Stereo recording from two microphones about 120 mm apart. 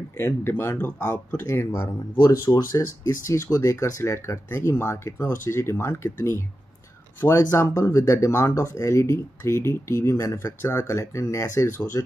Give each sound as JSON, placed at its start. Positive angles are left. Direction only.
{"t": 0.2, "sound": "speech", "side_deg": 20}